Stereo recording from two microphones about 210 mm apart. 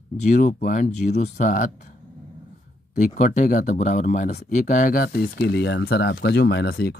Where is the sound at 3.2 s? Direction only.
35° left (ahead or behind).